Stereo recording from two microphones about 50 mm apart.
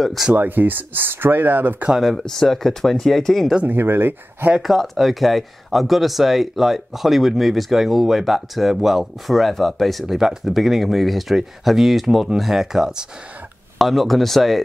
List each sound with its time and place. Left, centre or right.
0.0 s speech: centre
0.3 s speech: right
2.0 s speech: centre
3.6 s speech: right
4.6 s speech: centre